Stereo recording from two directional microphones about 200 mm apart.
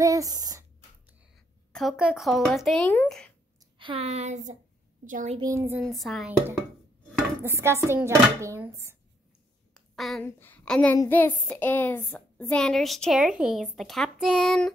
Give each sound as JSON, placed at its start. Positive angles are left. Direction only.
{"t": 0.0, "sound": "a sound", "side_deg": -15}
{"t": 1.7, "sound": "a woman's voice", "side_deg": 0}
{"t": 3.7, "sound": "speech", "side_deg": -25}
{"t": 5.4, "sound": "a child's voice", "side_deg": -15}
{"t": 5.9, "sound": "a woman's voice", "side_deg": 0}
{"t": 7.4, "sound": "a child's voice", "side_deg": -10}
{"t": 9.8, "sound": "a sound", "side_deg": 0}
{"t": 10.2, "sound": "a woman's voice", "side_deg": 10}